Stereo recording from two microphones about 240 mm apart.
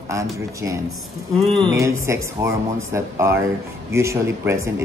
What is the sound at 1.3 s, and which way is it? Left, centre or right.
Speech, centre.